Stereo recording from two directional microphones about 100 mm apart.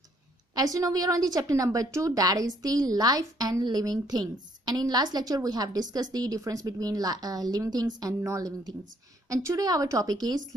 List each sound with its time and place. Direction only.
0.6 s a woman's voice: 35° right (ahead or behind)